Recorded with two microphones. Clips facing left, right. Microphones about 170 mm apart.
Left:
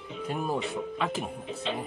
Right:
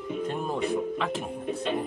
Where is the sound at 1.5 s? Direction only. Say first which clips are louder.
Right 7 dB; 55° right (ahead or behind).